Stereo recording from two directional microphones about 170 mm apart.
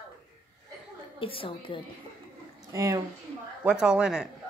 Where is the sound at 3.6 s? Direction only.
5° right (ahead or behind).